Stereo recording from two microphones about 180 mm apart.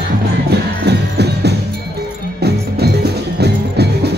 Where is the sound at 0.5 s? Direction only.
65° right (ahead or behind).